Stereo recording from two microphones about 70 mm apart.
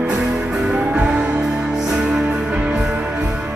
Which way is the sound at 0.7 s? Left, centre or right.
Centre.